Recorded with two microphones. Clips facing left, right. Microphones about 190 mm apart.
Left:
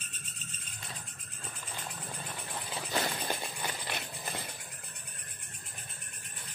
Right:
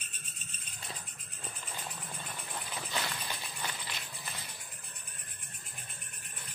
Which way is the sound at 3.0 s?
50° left (ahead or behind).